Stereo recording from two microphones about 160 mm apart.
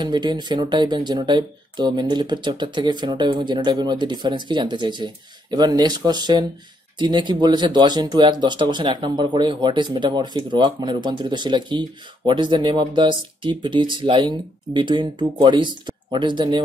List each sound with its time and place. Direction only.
0.0 s speech: 30° right (ahead or behind)